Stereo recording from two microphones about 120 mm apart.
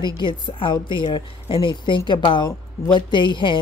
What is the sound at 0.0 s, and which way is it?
Speech, 40° left (ahead or behind).